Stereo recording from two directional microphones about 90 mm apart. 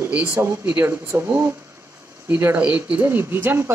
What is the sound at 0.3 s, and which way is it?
Speech, 30° right (ahead or behind).